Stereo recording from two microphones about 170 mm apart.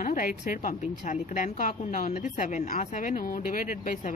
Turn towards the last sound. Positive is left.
turn(degrees=50)  # may be behind; listen again after turning